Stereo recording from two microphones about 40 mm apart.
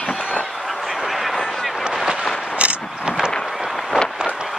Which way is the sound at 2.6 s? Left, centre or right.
Right.